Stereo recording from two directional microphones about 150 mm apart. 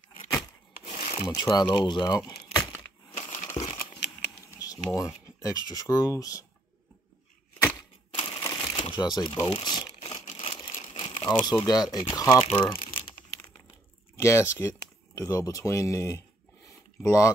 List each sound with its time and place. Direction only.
0.8 s rub: 55° left (ahead or behind)
1.3 s speech: 25° left (ahead or behind)
3.2 s crushing: 55° left (ahead or behind)
3.5 s crumpling: 50° left (ahead or behind)
4.5 s speech: 25° left (ahead or behind)
8.1 s typewriter: 35° left (ahead or behind)
8.4 s a sound: 20° left (ahead or behind)
8.8 s speech: 30° left (ahead or behind)
10.1 s a sound: 50° left (ahead or behind)
11.0 s speech: 30° left (ahead or behind)
12.3 s speech: 10° left (ahead or behind)
14.1 s speech: 20° left (ahead or behind)
16.6 s a sound: 20° left (ahead or behind)